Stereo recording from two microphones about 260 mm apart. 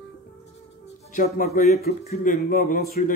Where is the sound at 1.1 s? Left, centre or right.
Left.